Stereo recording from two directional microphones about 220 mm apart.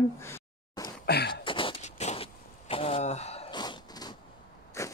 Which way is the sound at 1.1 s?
45° left (ahead or behind).